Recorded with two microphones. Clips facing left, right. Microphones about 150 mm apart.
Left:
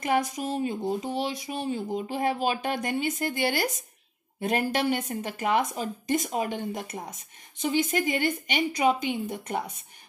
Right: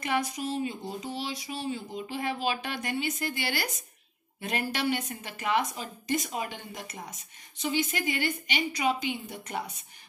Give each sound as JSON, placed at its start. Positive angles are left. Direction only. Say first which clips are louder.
{"t": 0.0, "sound": "speech", "louder": "left 4 dB", "side_deg": 45}